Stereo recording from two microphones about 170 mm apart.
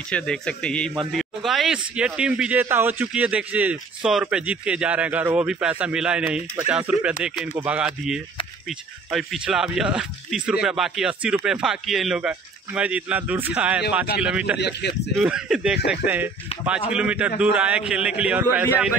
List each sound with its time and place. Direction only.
0.1 s speech: 5° left (ahead or behind)
14.6 s speech: 75° left (ahead or behind)
15.1 s speech: 5° right (ahead or behind)